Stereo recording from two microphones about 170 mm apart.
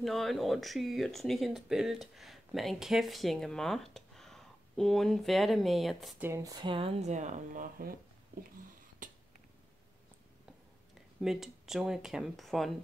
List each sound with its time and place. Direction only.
0.0 s speech: centre (ahead or behind)
6.2 s speech: 20° right (ahead or behind); by 8.0 s 55° right (ahead or behind)
9.0 s a sound: 50° right (ahead or behind)
11.1 s speech: centre (ahead or behind)